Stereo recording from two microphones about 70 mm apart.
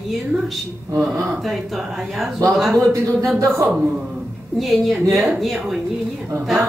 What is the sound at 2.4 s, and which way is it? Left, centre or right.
Speech, right.